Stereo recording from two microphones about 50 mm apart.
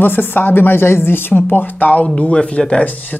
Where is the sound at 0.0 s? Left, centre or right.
Left.